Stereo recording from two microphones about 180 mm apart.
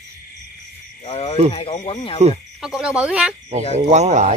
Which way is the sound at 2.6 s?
5° right (ahead or behind).